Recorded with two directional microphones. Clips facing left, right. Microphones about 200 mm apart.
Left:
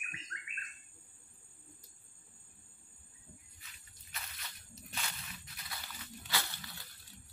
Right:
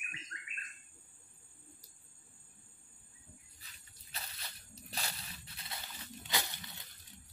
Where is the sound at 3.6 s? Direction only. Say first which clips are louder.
Even; 30° right (ahead or behind).